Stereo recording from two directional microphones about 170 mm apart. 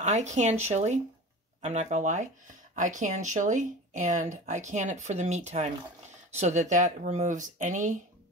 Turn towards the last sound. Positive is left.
turn(degrees=-45)  # may be behind; listen again after turning